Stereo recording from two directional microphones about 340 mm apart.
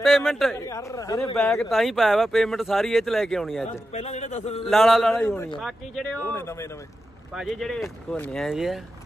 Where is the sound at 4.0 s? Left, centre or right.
Centre.